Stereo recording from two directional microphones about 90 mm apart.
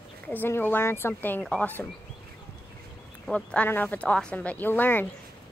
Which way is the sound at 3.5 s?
20° left (ahead or behind).